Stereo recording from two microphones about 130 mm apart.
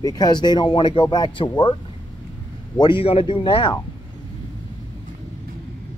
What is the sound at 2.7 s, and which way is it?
Speech, 35° left (ahead or behind).